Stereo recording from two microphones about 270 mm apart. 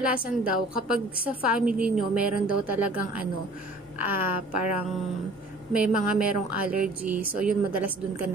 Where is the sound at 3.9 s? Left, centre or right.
Right.